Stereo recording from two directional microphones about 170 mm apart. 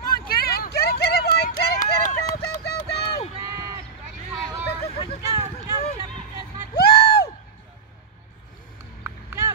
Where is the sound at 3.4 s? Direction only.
20° right (ahead or behind).